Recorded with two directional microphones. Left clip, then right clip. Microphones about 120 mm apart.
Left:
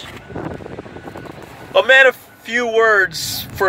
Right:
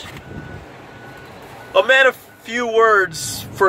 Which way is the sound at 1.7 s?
5° right (ahead or behind).